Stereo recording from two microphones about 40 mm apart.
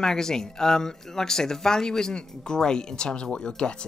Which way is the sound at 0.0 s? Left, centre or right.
Centre.